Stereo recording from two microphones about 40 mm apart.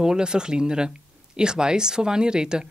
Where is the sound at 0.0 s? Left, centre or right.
Centre.